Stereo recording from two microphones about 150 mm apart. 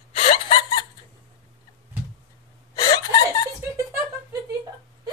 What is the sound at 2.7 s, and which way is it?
Chuckle, 25° left (ahead or behind).